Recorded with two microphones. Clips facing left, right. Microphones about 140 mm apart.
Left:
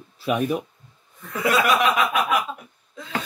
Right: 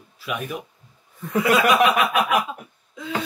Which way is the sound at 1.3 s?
20° right (ahead or behind).